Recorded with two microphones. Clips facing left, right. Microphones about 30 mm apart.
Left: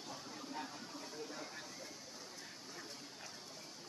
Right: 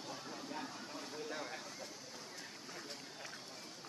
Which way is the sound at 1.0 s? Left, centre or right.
Right.